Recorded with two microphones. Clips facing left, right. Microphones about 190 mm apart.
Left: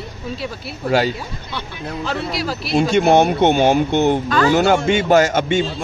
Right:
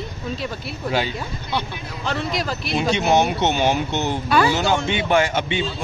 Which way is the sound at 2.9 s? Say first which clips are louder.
Left 4 dB; 55° left (ahead or behind).